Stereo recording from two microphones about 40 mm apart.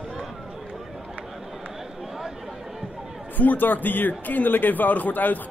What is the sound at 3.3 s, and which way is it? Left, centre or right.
A man's voice, left.